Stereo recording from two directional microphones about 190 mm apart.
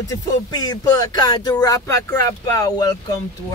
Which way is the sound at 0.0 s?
15° left (ahead or behind).